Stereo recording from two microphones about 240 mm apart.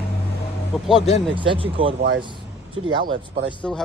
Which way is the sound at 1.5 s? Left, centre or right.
Right.